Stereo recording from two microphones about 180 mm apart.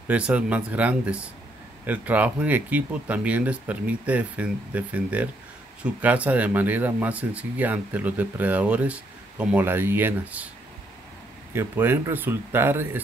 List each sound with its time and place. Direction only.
0.1 s speech: 5° right (ahead or behind)
11.5 s speech: 10° right (ahead or behind)